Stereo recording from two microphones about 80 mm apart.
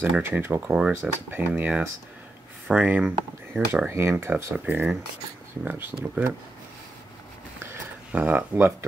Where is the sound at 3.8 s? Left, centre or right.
Right.